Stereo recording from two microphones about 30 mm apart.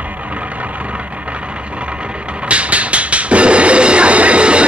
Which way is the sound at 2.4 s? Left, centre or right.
Right.